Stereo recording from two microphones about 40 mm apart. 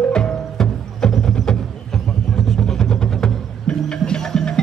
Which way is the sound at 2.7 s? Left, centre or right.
Centre.